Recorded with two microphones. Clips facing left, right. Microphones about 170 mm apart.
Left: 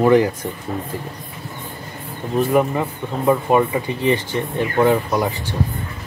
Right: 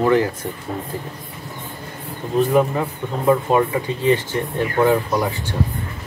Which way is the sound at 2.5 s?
15° left (ahead or behind).